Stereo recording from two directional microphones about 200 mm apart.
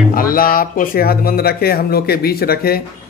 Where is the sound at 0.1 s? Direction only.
45° left (ahead or behind).